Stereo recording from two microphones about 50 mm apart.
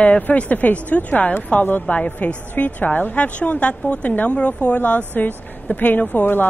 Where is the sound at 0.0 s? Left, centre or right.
Left.